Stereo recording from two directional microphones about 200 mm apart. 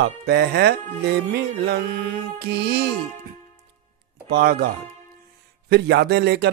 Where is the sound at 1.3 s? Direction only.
55° right (ahead or behind).